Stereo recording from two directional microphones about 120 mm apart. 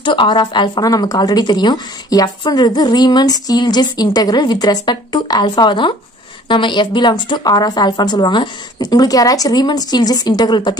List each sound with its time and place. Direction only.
0.0 s speech: 40° left (ahead or behind)